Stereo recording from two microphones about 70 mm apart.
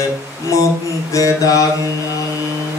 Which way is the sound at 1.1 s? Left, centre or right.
Left.